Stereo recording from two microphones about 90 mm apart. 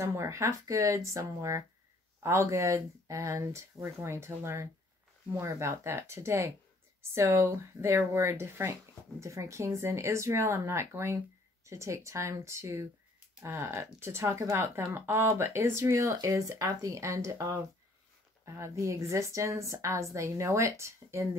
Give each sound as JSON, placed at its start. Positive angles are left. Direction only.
{"t": 0.0, "sound": "speech", "side_deg": -30}